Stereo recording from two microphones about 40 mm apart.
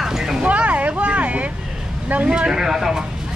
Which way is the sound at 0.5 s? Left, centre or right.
Right.